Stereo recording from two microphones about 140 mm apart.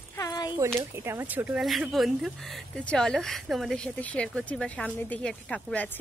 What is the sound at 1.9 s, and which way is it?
Speech, centre (ahead or behind).